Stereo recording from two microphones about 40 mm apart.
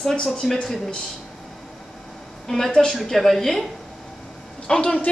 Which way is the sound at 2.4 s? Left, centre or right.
Centre.